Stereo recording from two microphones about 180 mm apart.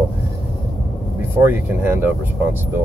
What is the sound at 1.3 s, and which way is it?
Speech, 10° right (ahead or behind).